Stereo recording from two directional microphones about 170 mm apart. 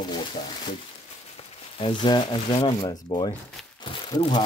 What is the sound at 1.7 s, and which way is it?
Speech, 30° left (ahead or behind).